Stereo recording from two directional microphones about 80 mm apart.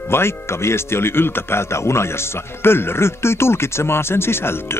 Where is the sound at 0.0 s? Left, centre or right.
Left.